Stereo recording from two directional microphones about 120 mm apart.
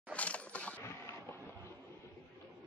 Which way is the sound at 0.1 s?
10° left (ahead or behind).